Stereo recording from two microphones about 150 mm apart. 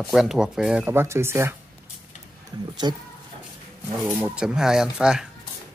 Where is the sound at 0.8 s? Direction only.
15° right (ahead or behind).